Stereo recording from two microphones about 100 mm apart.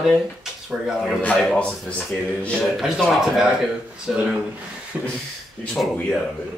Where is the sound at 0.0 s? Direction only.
5° right (ahead or behind).